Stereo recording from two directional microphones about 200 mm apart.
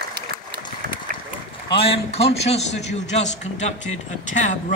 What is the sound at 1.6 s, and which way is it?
A man's voice, 30° left (ahead or behind).